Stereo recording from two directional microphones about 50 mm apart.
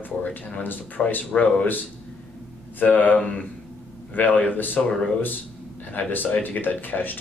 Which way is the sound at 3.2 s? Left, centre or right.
Left.